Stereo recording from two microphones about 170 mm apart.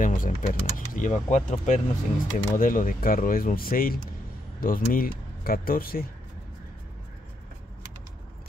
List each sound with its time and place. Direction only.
0.0 s speech: 55° left (ahead or behind)